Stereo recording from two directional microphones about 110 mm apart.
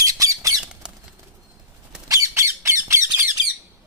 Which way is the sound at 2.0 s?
25° right (ahead or behind).